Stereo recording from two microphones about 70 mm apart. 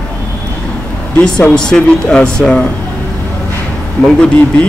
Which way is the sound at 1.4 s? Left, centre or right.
Centre.